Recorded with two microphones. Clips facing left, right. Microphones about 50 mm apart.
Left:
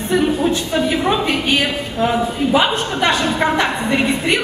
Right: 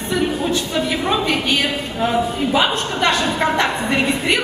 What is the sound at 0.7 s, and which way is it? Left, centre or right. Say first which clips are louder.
A woman's voice: left 2 dB; centre.